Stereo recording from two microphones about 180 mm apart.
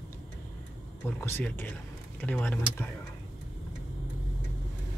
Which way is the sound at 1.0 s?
10° left (ahead or behind).